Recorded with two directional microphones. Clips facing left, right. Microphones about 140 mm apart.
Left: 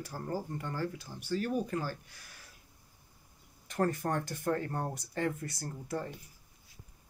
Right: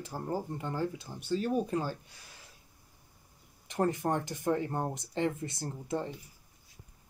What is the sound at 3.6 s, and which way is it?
Speech, 15° right (ahead or behind).